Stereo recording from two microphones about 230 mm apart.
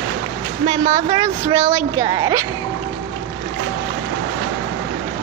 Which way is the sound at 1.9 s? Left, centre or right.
Centre.